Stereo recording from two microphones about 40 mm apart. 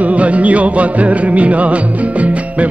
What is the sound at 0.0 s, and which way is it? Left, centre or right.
Music, right.